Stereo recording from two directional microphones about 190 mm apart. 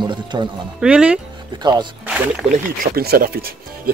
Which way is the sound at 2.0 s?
10° right (ahead or behind).